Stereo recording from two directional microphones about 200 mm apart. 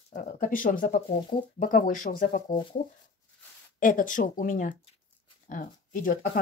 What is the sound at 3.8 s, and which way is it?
Speech, 40° left (ahead or behind).